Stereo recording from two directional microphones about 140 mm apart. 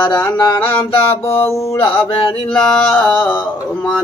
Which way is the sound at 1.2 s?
15° left (ahead or behind).